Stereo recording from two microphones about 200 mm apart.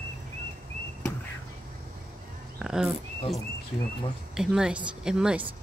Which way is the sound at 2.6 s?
5° right (ahead or behind).